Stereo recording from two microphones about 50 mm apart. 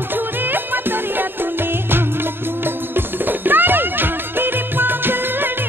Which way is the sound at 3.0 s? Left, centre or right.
Right.